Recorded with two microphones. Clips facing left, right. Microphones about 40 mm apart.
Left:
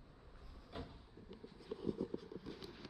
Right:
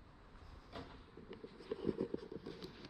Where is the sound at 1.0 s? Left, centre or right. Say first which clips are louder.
Right 3 dB; right.